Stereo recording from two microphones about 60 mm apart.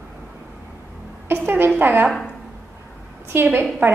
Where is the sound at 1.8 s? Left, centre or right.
Right.